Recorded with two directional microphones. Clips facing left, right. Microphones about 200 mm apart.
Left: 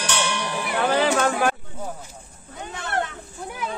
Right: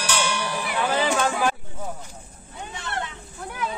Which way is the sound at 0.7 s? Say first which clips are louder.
Left 3 dB; 55° left (ahead or behind).